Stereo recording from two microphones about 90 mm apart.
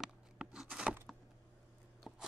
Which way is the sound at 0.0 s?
5° right (ahead or behind).